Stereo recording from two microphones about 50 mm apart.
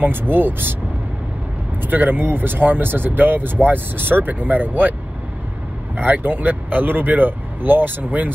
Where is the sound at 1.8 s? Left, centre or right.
Right.